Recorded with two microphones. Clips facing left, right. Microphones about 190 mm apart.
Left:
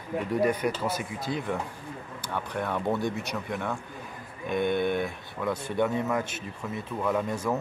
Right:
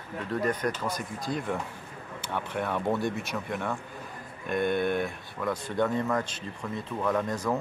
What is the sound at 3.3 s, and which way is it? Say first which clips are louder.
Speech: even; centre (ahead or behind).